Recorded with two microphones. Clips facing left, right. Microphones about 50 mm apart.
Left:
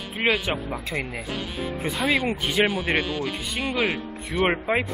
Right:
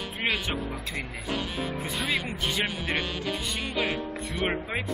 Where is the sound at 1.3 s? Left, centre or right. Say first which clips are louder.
Right 2 dB; centre.